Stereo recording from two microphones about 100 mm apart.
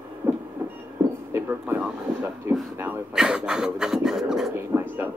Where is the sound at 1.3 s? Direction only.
20° right (ahead or behind).